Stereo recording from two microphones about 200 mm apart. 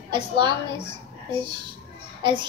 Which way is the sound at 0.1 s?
25° right (ahead or behind).